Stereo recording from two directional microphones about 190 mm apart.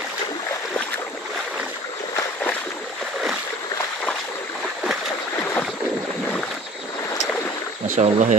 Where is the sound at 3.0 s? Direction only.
Centre (ahead or behind).